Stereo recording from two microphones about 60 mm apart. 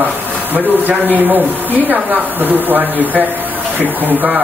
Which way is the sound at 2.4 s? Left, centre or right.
Right.